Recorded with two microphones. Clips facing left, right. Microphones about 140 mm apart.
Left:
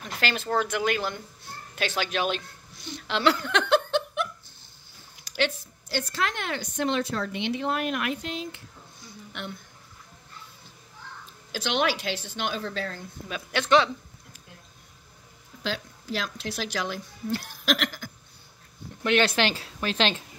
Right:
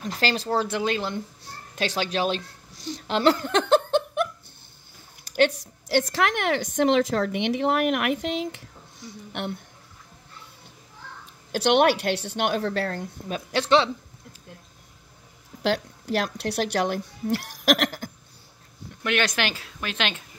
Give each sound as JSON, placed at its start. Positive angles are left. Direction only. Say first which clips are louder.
{"t": 0.0, "sound": "speech", "louder": "right 4 dB", "side_deg": -35}
{"t": 5.2, "sound": "a sound", "louder": "right 6 dB", "side_deg": -50}
{"t": 5.6, "sound": "a sound", "louder": "right 8 dB", "side_deg": -75}
{"t": 6.1, "sound": "a woman's voice", "louder": "right 6 dB", "side_deg": -75}
{"t": 6.8, "sound": "speech", "louder": "right 6 dB", "side_deg": -90}
{"t": 11.5, "sound": "speech", "louder": "right 7 dB", "side_deg": -60}
{"t": 13.3, "sound": "speech", "louder": "right 1 dB", "side_deg": -35}
{"t": 15.6, "sound": "speech", "louder": "right 8 dB", "side_deg": -65}
{"t": 19.0, "sound": "a woman's voice", "louder": "left 2 dB", "side_deg": 30}